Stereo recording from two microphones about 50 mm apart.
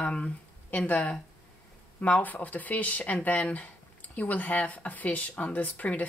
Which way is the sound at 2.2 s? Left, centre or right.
Left.